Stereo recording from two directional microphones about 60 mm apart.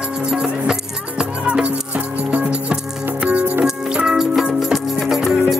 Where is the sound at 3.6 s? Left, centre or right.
Centre.